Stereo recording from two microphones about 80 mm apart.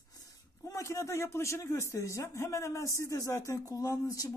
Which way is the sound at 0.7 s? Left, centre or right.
Left.